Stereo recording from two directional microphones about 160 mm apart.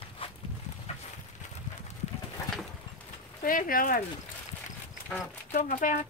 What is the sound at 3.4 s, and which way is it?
Speech, 60° left (ahead or behind).